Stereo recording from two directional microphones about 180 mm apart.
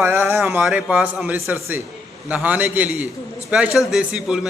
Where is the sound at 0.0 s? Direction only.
15° right (ahead or behind).